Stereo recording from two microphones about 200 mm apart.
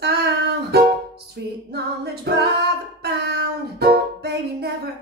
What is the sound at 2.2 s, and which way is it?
Female singing, 55° right (ahead or behind).